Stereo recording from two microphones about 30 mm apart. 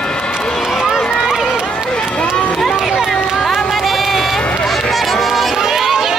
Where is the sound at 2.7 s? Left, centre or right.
Centre.